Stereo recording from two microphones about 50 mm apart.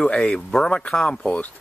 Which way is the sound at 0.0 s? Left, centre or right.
Left.